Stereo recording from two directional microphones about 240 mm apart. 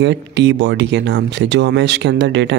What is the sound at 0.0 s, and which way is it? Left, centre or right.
Speech, right.